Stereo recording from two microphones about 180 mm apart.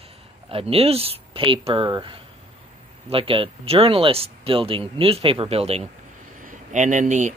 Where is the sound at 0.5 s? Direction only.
30° right (ahead or behind).